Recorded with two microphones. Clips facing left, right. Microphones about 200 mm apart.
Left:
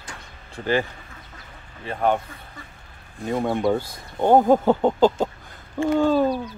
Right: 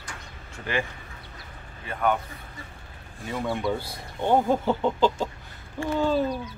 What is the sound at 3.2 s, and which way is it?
Speech, 50° left (ahead or behind).